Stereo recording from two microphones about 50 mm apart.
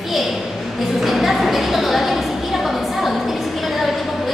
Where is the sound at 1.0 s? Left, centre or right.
Centre.